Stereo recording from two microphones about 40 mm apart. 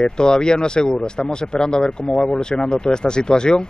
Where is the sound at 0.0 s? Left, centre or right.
Centre.